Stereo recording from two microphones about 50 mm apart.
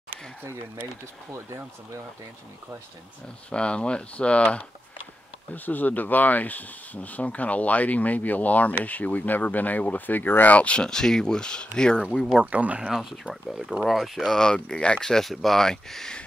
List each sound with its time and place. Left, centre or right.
3.4 s speech: left
5.5 s speech: left
10.5 s speech: left
12.4 s speech: right
13.3 s speech: centre